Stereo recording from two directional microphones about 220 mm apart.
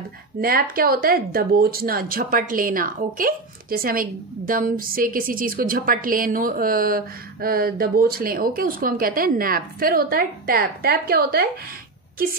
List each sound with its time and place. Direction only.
0.4 s speech: 40° right (ahead or behind)